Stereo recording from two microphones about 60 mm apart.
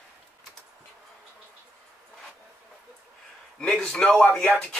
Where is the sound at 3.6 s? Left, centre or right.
Centre.